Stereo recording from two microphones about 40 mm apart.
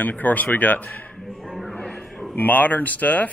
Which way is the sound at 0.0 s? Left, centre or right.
Left.